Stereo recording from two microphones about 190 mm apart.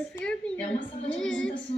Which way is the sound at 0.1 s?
5° left (ahead or behind).